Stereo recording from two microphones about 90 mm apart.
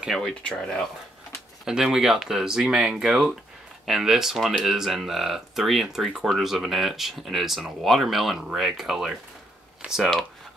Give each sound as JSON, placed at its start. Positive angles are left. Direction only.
{"t": 0.0, "sound": "speech", "side_deg": 0}
{"t": 1.6, "sound": "speech", "side_deg": -5}